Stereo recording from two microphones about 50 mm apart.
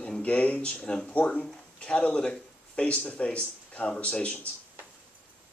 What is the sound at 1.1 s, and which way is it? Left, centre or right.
Speech, left.